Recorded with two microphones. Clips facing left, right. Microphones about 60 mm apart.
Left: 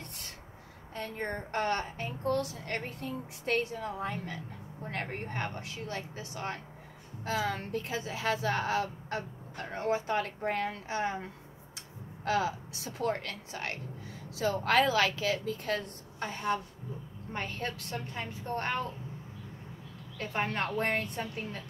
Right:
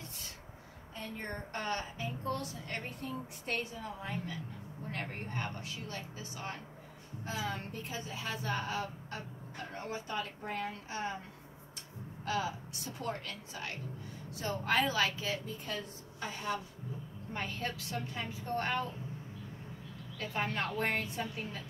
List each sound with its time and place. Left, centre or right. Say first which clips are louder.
0.0 s a sound: left 2 dB; left
0.9 s a woman's voice: left 5 dB; left
7.2 s speech: left 6 dB; left
12.3 s a woman's voice: left 5 dB; left
14.3 s a woman's voice: left 5 dB; left
16.2 s a woman's voice: left 5 dB; left
20.2 s a woman's voice: left 3 dB; left